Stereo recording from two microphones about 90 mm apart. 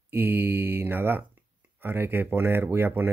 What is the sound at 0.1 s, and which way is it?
Speech, 20° right (ahead or behind).